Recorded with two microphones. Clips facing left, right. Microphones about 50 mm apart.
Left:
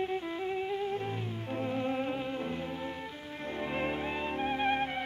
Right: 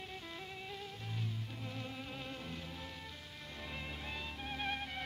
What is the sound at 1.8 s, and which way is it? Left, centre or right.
Music, left.